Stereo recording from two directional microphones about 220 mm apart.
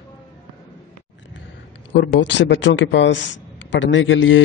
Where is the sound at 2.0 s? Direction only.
55° left (ahead or behind).